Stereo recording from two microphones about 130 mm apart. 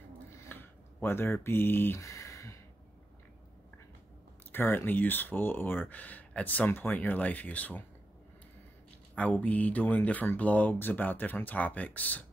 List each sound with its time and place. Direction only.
0.5 s a sound: 15° left (ahead or behind)
4.5 s speech: 15° left (ahead or behind)
9.1 s speech: 10° left (ahead or behind)